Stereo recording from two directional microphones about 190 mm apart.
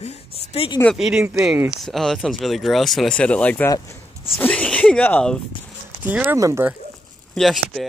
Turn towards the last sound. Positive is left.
turn(degrees=0)  # may be behind; listen again after turning